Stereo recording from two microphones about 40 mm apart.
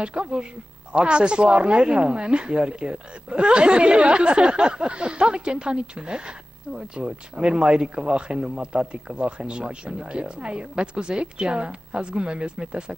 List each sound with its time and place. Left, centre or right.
0.0 s speech: right